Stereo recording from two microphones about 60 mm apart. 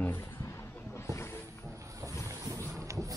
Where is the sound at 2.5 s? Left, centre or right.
Right.